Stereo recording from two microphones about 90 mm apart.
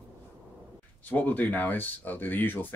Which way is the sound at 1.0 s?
15° left (ahead or behind).